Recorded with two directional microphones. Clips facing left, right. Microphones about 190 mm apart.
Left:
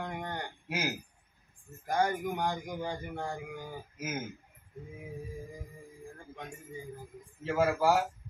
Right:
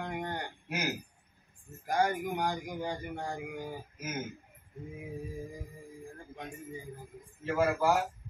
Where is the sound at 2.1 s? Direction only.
Centre (ahead or behind).